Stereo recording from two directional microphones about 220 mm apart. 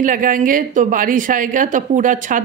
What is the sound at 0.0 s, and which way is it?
Speech, 40° right (ahead or behind).